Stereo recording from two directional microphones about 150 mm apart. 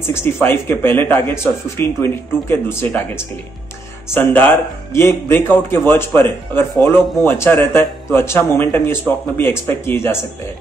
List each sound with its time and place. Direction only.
0.1 s speech: 15° left (ahead or behind)
4.1 s speech: 10° left (ahead or behind)